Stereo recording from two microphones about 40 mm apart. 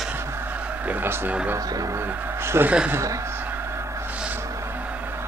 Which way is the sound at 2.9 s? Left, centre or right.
Right.